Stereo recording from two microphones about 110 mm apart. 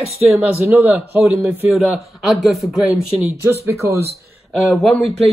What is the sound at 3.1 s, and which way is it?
Speech, 20° right (ahead or behind).